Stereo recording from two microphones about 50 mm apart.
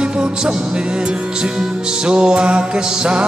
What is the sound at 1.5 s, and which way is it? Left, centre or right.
Music, centre.